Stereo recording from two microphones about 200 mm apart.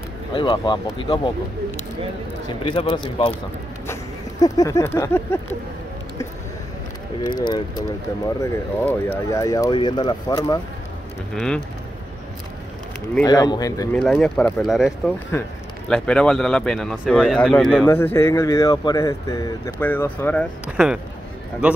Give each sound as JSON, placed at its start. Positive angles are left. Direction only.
{"t": 0.3, "sound": "speech", "side_deg": 25}
{"t": 2.6, "sound": "speech", "side_deg": 25}
{"t": 3.8, "sound": "a sound", "side_deg": 15}
{"t": 7.4, "sound": "speech", "side_deg": 20}
{"t": 11.3, "sound": "speech", "side_deg": 5}
{"t": 13.2, "sound": "speech", "side_deg": 20}
{"t": 13.9, "sound": "speech", "side_deg": 5}
{"t": 17.8, "sound": "speech", "side_deg": 10}
{"t": 20.6, "sound": "speech", "side_deg": -5}